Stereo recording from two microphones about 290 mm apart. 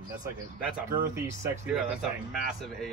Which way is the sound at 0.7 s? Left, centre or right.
Centre.